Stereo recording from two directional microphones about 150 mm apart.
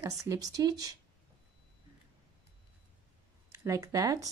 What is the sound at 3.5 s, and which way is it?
Speech, 20° right (ahead or behind).